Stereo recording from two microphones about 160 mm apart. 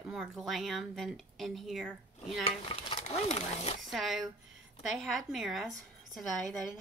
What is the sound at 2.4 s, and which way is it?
Stir, 40° left (ahead or behind).